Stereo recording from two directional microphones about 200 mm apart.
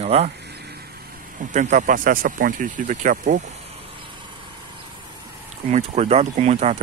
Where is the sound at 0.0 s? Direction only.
30° right (ahead or behind).